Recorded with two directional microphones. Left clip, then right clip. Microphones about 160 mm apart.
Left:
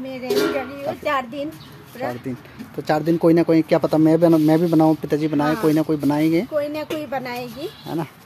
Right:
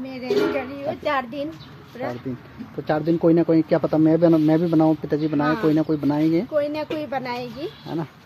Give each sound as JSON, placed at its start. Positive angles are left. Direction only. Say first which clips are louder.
{"t": 0.0, "sound": "a child's voice", "louder": "left 1 dB", "side_deg": 20}
{"t": 2.9, "sound": "a child's voice", "louder": "left 2 dB", "side_deg": 25}